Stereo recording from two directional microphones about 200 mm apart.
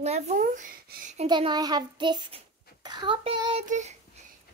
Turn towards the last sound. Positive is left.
turn(degrees=-35)  # may be behind; listen again after turning